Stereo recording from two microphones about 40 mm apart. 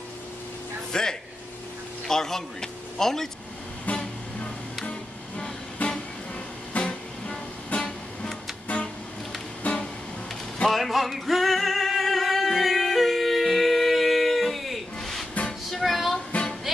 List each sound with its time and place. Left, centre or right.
0.9 s a man's voice: centre
5.8 s music: left
6.8 s music: left
9.6 s music: left
10.7 s music: centre
15.7 s child singing: centre
16.7 s music: centre